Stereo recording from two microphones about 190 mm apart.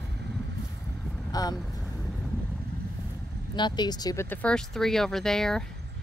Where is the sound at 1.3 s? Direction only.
20° left (ahead or behind).